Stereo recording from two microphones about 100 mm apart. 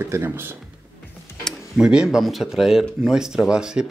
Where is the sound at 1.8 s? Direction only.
10° right (ahead or behind).